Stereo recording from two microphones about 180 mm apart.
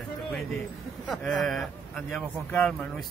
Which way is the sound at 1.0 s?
5° left (ahead or behind).